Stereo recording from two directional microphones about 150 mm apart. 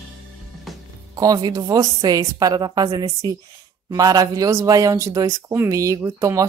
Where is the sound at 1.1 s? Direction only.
25° right (ahead or behind).